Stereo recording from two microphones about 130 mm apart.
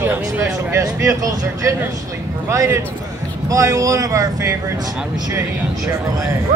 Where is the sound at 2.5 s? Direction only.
20° right (ahead or behind).